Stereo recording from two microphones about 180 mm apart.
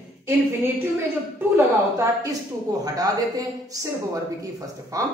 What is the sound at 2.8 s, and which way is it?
Speech, 20° right (ahead or behind).